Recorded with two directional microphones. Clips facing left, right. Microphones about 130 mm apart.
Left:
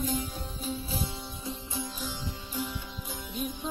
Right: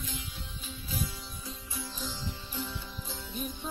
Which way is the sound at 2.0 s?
10° left (ahead or behind).